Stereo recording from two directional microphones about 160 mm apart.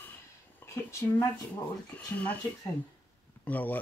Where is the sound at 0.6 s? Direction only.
15° left (ahead or behind).